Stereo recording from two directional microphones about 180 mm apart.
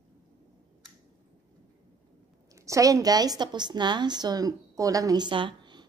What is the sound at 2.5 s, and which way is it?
A woman's voice, 15° right (ahead or behind).